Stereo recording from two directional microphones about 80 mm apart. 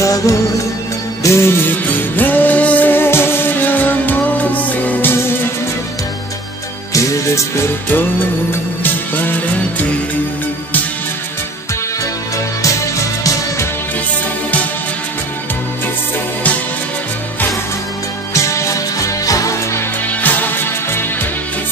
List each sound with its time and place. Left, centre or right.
0.0 s music: left
6.9 s music: left
8.8 s music: left
12.6 s music: left
18.3 s music: left
20.1 s music: left